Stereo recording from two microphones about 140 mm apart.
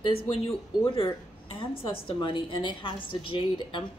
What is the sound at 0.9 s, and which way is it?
Speech, 40° left (ahead or behind).